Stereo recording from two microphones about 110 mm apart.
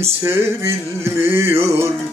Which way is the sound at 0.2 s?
25° right (ahead or behind).